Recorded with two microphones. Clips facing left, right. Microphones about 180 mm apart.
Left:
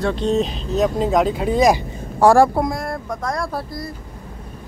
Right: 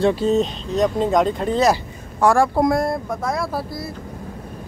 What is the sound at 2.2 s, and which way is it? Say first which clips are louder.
Speech: left 4 dB; 35° left (ahead or behind).